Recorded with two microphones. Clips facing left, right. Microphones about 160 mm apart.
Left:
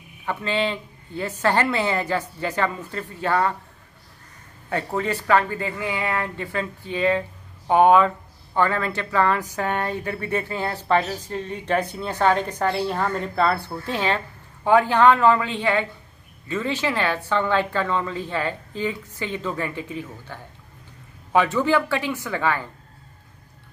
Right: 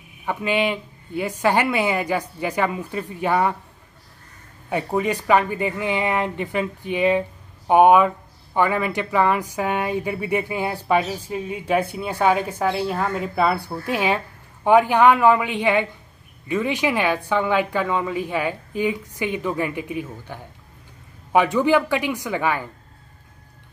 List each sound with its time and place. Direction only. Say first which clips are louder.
0.2 s speech: right 2 dB; 15° right (ahead or behind)
4.6 s speech: right 3 dB; 15° right (ahead or behind)